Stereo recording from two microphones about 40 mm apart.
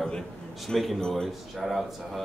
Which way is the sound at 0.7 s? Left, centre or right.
Centre.